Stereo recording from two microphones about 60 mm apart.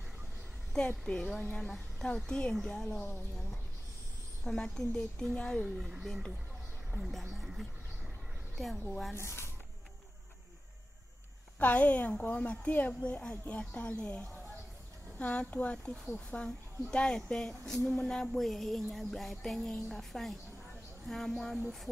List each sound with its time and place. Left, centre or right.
0.7 s a woman's voice: centre
2.5 s music: centre
4.5 s a woman's voice: centre
5.7 s speech: centre
6.0 s music: centre
8.5 s music: centre
9.1 s speech: left
11.6 s speech: left
16.8 s a woman's voice: centre
17.8 s music: centre